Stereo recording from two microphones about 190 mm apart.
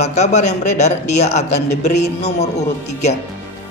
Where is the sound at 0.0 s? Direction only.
35° left (ahead or behind).